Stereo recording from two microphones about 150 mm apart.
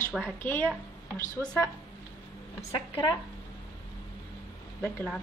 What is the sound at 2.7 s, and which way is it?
Speech, 35° left (ahead or behind).